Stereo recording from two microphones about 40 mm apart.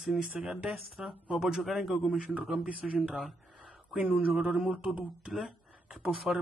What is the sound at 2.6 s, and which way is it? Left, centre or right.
Speech, right.